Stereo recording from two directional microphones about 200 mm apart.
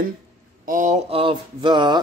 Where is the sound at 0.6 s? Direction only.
40° right (ahead or behind); by 2.0 s 25° right (ahead or behind).